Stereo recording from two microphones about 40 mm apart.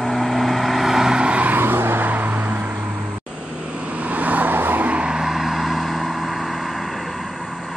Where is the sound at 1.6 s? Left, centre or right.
Right.